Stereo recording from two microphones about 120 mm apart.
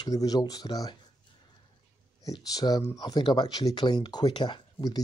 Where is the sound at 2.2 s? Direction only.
30° left (ahead or behind).